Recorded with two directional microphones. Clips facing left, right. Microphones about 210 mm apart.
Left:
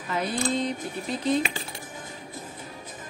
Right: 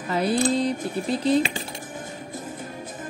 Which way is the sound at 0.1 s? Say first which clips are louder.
Right 5 dB; 35° right (ahead or behind).